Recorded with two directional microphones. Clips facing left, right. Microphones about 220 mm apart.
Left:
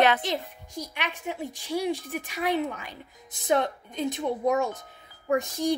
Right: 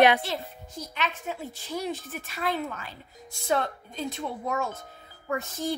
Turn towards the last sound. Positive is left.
turn(degrees=15)  # may be behind; listen again after turning